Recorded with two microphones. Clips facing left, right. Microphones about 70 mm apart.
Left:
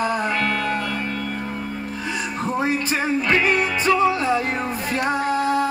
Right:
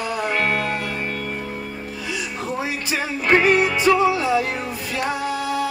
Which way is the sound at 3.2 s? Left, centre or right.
Right.